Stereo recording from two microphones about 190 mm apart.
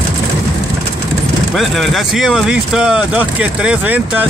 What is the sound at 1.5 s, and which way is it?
Speech, centre (ahead or behind).